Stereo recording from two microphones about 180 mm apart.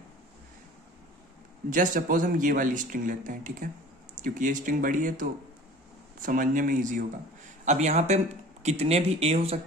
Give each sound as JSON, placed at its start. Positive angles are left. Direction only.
{"t": 1.7, "sound": "speech", "side_deg": -50}